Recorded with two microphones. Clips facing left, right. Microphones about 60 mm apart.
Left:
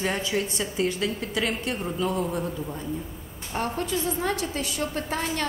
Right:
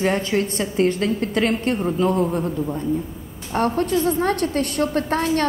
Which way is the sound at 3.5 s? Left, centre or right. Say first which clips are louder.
Right 8 dB; right.